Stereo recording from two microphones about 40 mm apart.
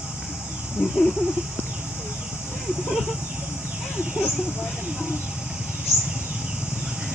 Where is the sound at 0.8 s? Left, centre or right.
Right.